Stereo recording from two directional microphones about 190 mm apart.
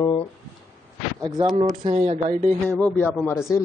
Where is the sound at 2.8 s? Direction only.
10° left (ahead or behind).